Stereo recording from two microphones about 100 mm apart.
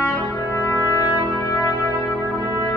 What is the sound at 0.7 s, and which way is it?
Brass instrument, 30° left (ahead or behind).